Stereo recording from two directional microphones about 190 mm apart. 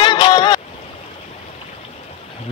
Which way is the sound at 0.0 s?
25° left (ahead or behind).